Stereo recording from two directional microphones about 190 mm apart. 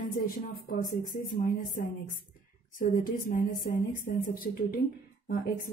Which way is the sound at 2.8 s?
45° left (ahead or behind).